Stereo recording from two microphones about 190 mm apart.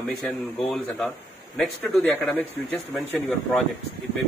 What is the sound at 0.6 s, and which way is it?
Speech, 5° left (ahead or behind).